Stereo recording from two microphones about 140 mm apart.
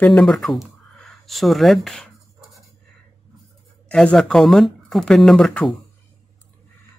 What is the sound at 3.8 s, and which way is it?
Speech, 5° left (ahead or behind).